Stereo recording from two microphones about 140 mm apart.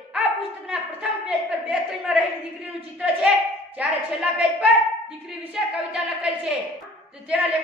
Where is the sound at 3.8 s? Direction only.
10° right (ahead or behind).